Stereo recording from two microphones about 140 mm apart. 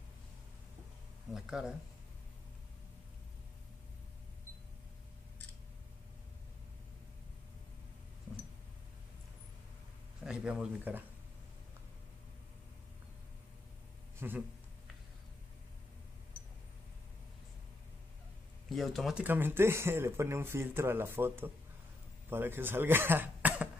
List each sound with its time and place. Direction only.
1.3 s speech: 5° right (ahead or behind)
10.2 s speech: 5° right (ahead or behind)
14.2 s speech: 15° right (ahead or behind)
18.7 s speech: centre (ahead or behind)
19.2 s speech: 15° right (ahead or behind)